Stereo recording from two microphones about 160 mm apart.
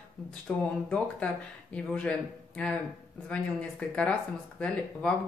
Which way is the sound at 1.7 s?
5° left (ahead or behind).